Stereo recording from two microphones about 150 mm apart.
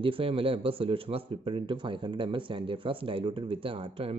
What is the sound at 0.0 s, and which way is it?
Speech, 35° right (ahead or behind).